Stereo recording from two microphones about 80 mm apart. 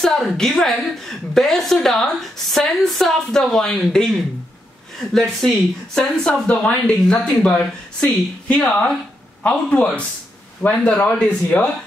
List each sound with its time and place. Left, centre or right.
0.0 s a woman's voice: centre
5.1 s a woman's voice: centre